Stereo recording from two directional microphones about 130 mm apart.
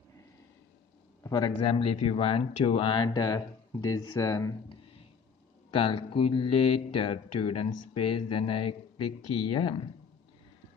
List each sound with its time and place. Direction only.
1.2 s speech: 35° left (ahead or behind)
5.7 s speech: 40° left (ahead or behind)